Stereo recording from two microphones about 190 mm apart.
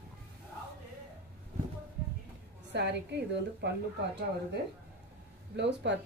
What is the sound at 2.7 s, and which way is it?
Speech, 65° right (ahead or behind).